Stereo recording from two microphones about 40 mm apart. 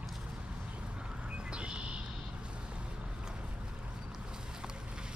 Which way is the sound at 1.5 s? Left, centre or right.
Right.